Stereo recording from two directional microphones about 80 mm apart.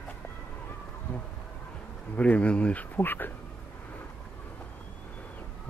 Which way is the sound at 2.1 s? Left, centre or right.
Centre.